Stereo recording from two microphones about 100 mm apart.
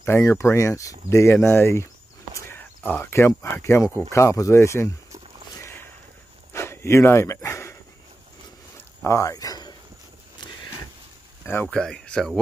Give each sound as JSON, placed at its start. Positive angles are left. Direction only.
{"t": 0.0, "sound": "speech", "side_deg": 25}
{"t": 5.5, "sound": "a sound", "side_deg": 25}
{"t": 9.0, "sound": "speech", "side_deg": 30}
{"t": 11.6, "sound": "speech", "side_deg": 5}